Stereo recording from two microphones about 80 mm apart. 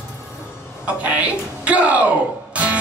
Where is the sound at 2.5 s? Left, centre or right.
Centre.